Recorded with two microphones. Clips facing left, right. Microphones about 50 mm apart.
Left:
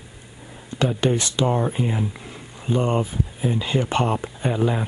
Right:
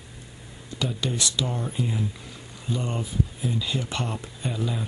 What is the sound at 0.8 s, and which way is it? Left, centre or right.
Speech, left.